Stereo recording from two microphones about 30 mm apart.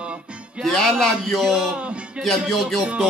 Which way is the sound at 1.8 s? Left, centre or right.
Right.